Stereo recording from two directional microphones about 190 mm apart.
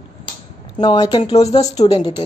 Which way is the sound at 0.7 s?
25° left (ahead or behind).